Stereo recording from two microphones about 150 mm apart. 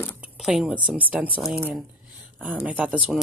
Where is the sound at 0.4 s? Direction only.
Centre (ahead or behind).